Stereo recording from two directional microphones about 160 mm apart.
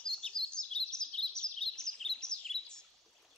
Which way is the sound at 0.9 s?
5° left (ahead or behind).